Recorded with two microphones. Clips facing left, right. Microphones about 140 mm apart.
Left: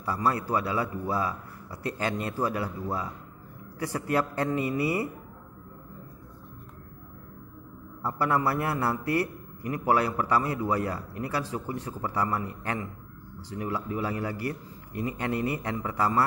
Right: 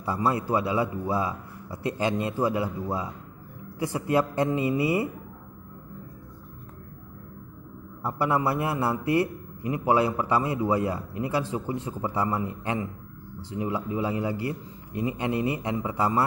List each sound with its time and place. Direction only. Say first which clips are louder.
0.0 s a man's voice: right 2 dB; 20° right (ahead or behind)
8.0 s a man's voice: right 1 dB; 20° right (ahead or behind)